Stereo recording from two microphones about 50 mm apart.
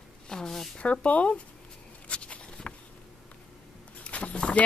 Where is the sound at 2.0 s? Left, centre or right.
Left.